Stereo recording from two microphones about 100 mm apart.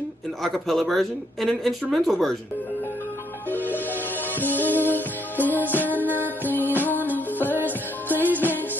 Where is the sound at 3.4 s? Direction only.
20° left (ahead or behind).